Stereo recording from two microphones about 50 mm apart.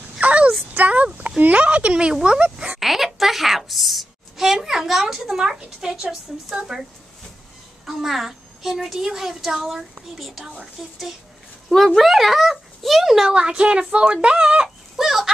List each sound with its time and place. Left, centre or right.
0.2 s a sound: right
1.4 s speech: right
2.8 s a woman's voice: centre
13.3 s speech: centre
15.0 s a woman's voice: centre